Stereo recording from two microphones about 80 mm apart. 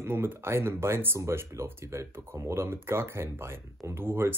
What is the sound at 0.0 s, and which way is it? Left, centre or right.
Speech, right.